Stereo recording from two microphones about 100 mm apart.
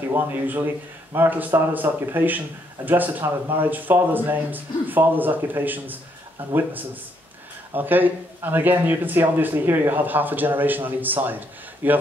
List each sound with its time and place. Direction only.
0.1 s speech: 20° right (ahead or behind)
7.7 s speech: 20° right (ahead or behind)